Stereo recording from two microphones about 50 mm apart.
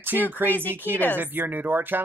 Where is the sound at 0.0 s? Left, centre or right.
Right.